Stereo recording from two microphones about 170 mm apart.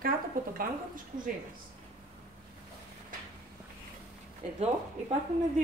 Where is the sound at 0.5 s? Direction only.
55° right (ahead or behind).